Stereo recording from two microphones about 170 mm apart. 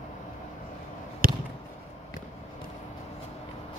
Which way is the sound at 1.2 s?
55° right (ahead or behind).